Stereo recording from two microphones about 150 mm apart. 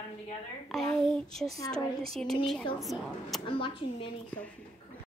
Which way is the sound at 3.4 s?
35° left (ahead or behind).